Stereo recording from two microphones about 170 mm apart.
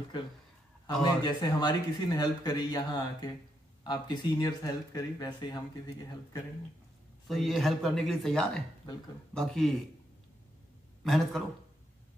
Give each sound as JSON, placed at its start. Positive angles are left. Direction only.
{"t": 1.2, "sound": "speech", "side_deg": 25}
{"t": 7.2, "sound": "speech", "side_deg": 0}
{"t": 11.1, "sound": "speech", "side_deg": 0}